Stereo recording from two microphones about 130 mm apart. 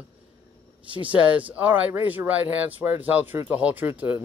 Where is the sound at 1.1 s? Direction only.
10° right (ahead or behind).